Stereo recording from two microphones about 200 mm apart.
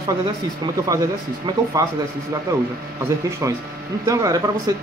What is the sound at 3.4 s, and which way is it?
Speech, 15° right (ahead or behind).